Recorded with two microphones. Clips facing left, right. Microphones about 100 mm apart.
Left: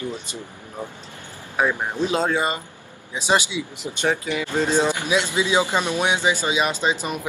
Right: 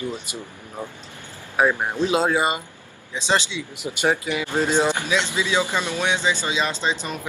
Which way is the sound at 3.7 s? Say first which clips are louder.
Right 2 dB; 15° right (ahead or behind).